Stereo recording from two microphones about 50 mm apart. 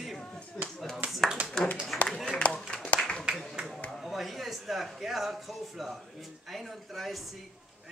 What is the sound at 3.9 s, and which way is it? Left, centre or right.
Speech, centre.